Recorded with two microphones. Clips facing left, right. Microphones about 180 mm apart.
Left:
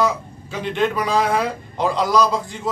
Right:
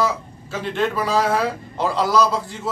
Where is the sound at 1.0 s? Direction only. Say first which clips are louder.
Even; 5° right (ahead or behind).